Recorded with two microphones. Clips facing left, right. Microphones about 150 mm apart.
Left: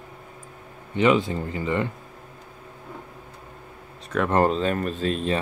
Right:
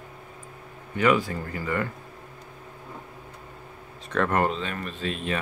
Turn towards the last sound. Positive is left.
turn(degrees=35)  # may be behind; listen again after turning